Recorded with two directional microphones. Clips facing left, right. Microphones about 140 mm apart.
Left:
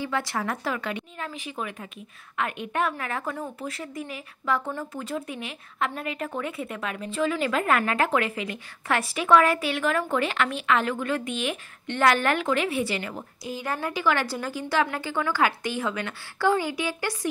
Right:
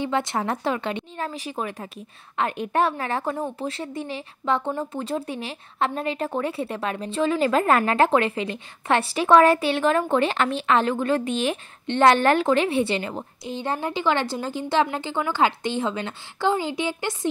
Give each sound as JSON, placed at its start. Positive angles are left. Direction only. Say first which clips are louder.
{"t": 0.0, "sound": "a woman's voice", "louder": "right 4 dB", "side_deg": -25}